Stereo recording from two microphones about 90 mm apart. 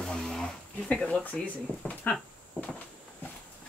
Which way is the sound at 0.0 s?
5° left (ahead or behind).